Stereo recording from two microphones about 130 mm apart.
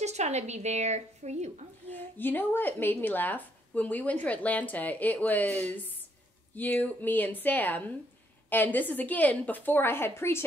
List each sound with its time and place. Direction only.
0.0 s a woman's voice: 60° right (ahead or behind)
1.9 s speech: 15° left (ahead or behind)